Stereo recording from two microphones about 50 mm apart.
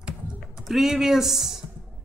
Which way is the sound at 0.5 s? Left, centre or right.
Centre.